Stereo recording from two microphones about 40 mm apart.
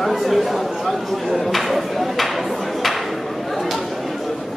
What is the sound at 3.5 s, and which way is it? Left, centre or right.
Chatter, centre.